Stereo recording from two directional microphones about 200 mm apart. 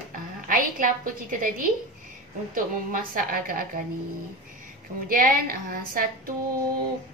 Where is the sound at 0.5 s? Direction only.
40° right (ahead or behind).